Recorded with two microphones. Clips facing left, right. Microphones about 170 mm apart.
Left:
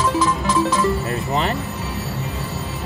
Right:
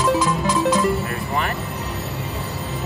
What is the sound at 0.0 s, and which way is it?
Music, 20° right (ahead or behind).